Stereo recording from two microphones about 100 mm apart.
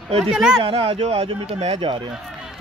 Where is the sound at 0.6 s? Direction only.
70° right (ahead or behind).